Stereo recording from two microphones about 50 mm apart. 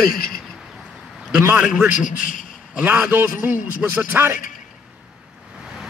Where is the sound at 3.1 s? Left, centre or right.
Right.